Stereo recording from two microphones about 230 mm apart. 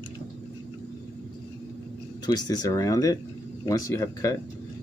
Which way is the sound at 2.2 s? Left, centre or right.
Centre.